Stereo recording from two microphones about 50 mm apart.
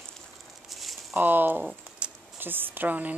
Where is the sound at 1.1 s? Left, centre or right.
Right.